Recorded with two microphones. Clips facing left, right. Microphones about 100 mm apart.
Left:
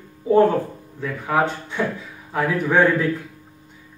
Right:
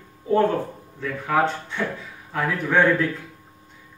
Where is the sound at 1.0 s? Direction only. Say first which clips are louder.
Left 1 dB; 15° left (ahead or behind).